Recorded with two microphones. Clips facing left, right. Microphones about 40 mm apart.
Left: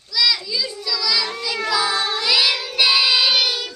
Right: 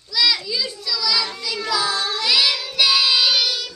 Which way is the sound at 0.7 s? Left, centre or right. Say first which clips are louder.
Left 1 dB; centre.